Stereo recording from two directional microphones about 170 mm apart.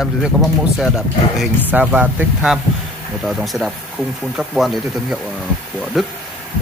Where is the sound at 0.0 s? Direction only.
Centre (ahead or behind).